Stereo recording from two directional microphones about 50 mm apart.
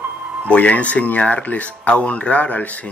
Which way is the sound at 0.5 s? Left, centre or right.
Left.